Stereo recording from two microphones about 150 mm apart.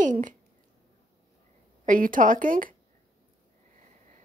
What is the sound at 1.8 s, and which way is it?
Speech, 65° right (ahead or behind).